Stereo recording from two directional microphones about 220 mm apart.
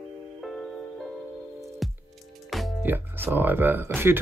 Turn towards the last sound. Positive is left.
turn(degrees=-10)  # may be behind; listen again after turning